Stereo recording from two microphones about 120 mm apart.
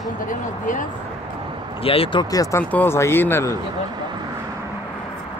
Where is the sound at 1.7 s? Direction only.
50° left (ahead or behind).